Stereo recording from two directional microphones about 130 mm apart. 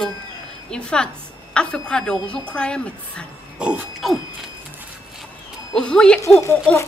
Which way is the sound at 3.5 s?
10° right (ahead or behind).